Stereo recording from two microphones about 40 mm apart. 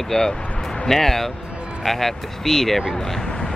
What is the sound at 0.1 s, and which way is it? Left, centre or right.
Speech, centre.